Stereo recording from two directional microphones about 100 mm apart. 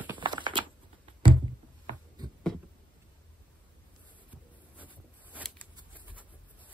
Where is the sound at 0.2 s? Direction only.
55° right (ahead or behind).